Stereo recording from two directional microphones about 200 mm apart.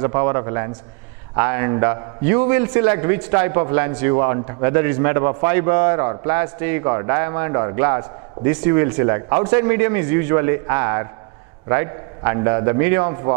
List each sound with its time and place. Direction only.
0.0 s a man's voice: 15° right (ahead or behind)